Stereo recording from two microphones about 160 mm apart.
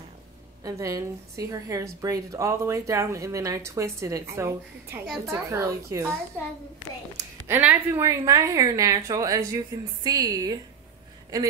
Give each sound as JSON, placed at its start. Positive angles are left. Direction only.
{"t": 0.7, "sound": "speech", "side_deg": -20}
{"t": 7.2, "sound": "speech", "side_deg": -15}